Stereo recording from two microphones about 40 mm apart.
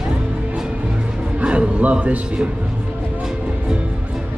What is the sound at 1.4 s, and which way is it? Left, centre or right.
Speech, right.